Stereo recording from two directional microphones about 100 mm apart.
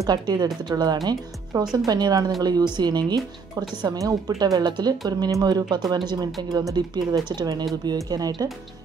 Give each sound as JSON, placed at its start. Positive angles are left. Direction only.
{"t": 0.0, "sound": "speech", "side_deg": -40}